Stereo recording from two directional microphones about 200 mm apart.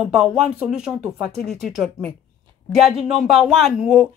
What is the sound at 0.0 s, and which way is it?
Speech, centre (ahead or behind).